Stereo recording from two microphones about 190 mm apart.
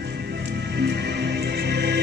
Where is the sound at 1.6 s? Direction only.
60° right (ahead or behind).